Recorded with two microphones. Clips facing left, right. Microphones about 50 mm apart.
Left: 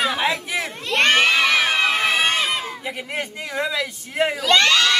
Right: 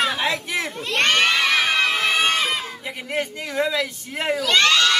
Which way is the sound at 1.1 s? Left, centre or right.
Centre.